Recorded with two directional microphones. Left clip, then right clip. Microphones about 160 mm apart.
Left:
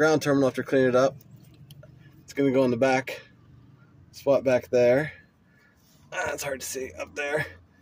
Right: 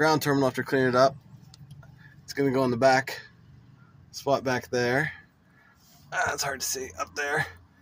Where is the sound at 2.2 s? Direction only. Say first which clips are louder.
Left 2 dB; centre (ahead or behind).